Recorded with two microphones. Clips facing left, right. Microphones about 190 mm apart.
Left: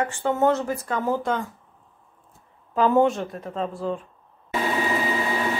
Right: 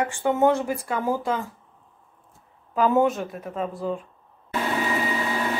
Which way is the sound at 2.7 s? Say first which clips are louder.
Left 1 dB; 5° right (ahead or behind).